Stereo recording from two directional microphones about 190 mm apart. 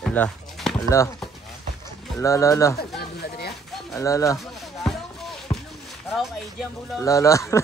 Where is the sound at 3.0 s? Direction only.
55° left (ahead or behind).